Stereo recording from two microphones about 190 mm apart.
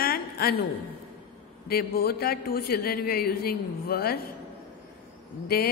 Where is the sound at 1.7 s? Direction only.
55° left (ahead or behind).